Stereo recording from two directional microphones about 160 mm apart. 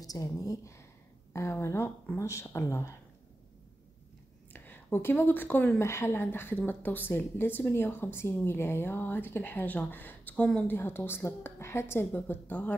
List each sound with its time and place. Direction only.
0.0 s a woman's voice: 20° left (ahead or behind)
4.5 s a sound: 10° left (ahead or behind)
5.2 s a woman's voice: 10° left (ahead or behind)